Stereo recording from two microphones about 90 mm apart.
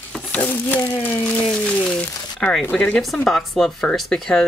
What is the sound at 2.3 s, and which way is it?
Speech, 10° left (ahead or behind).